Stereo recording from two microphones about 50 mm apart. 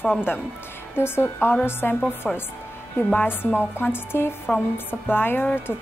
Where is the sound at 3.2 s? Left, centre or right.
Left.